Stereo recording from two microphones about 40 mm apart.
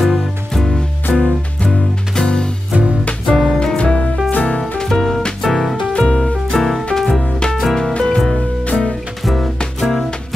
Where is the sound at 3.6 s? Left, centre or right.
Centre.